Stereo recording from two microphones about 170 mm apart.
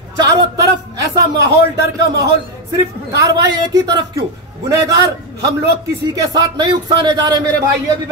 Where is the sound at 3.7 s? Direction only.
20° right (ahead or behind).